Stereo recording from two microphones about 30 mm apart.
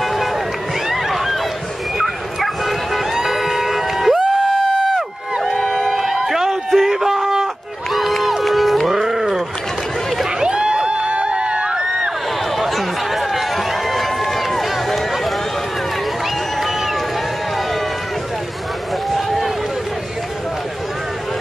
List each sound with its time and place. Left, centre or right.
0.0 s run: centre
1.0 s a sound: centre
2.4 s bow-wow: centre
3.0 s music: centre
6.0 s run: centre
6.7 s a sound: centre
7.9 s crowd: centre
8.5 s music: centre
9.0 s a sound: centre
10.4 s a sound: right
12.5 s run: centre
16.5 s run: centre
19.0 s run: centre